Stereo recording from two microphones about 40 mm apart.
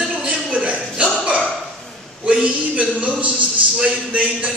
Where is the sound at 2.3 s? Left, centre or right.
Right.